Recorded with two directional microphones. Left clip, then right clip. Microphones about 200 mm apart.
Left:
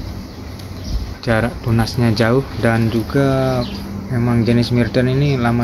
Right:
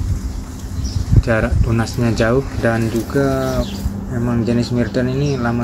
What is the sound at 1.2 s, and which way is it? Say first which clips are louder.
Speech: left 1 dB; 15° left (ahead or behind).